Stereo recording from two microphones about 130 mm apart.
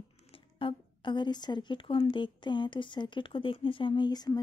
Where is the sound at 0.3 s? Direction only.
45° left (ahead or behind).